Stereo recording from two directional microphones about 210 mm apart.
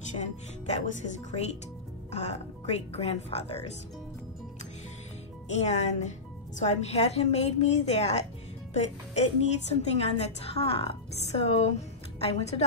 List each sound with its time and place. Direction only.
0.1 s music: 35° left (ahead or behind)
2.0 s a woman's voice: 30° left (ahead or behind)
5.5 s a woman's voice: 30° left (ahead or behind)